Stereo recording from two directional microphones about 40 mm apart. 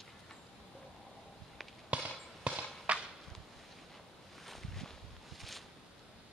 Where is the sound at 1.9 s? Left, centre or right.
Right.